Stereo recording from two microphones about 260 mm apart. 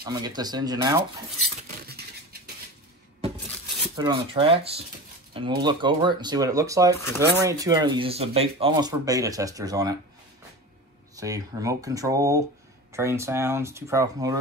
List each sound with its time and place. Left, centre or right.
0.0 s speech: centre
1.9 s dishes: right
3.9 s speech: centre
11.1 s speech: centre